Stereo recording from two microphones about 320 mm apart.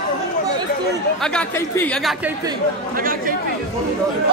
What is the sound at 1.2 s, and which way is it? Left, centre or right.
Speech, centre.